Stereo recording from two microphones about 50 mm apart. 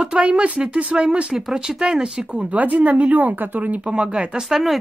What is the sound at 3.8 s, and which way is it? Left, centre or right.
Speech, right.